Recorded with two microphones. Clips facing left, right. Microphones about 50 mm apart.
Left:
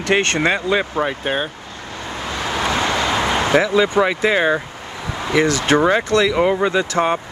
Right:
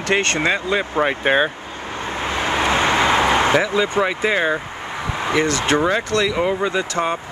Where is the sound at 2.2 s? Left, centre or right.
Right.